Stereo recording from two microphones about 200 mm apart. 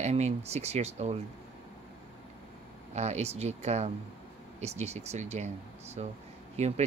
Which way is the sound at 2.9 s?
35° right (ahead or behind).